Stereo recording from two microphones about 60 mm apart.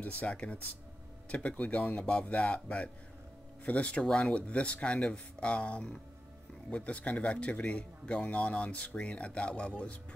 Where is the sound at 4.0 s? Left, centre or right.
Centre.